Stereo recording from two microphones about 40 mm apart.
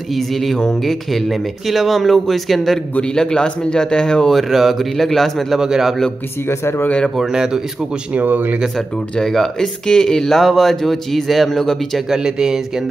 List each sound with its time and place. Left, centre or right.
0.1 s speech: centre
3.0 s a man's voice: centre
4.3 s speech: centre
5.6 s speech: centre
6.4 s speech: left
7.2 s speech: centre
8.1 s speech: right
9.2 s speech: centre
12.1 s speech: centre